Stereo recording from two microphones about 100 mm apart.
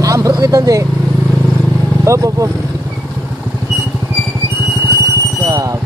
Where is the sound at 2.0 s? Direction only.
30° right (ahead or behind).